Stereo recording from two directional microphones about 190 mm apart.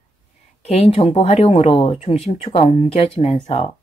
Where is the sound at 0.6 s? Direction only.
35° left (ahead or behind).